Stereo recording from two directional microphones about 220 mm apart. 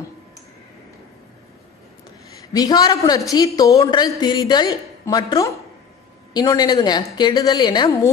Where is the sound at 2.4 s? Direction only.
15° left (ahead or behind).